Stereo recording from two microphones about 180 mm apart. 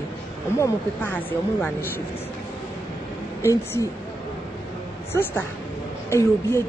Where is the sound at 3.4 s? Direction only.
15° left (ahead or behind).